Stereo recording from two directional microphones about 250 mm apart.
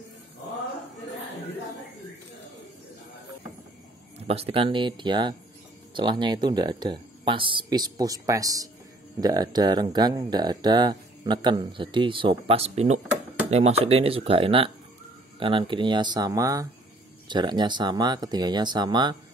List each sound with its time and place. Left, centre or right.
4.3 s speech: right